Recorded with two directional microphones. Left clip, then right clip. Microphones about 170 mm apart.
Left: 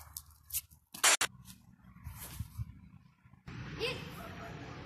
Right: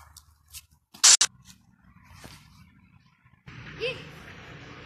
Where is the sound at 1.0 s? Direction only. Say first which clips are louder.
Right 9 dB; 30° left (ahead or behind).